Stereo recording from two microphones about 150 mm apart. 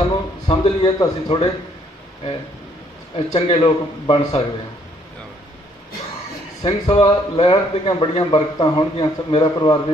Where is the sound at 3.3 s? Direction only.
35° left (ahead or behind).